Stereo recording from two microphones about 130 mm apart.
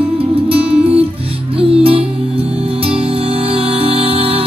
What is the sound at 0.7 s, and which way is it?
Music, 10° right (ahead or behind).